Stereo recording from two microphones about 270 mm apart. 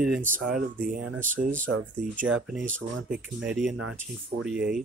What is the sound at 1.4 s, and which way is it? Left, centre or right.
Speech, right.